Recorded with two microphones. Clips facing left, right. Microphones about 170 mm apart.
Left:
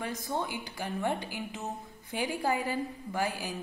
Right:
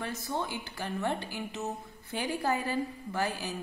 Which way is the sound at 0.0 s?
15° left (ahead or behind).